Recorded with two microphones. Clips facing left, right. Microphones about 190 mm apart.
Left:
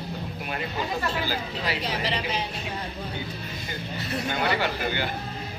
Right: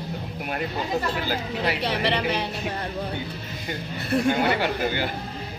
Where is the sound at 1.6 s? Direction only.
65° right (ahead or behind).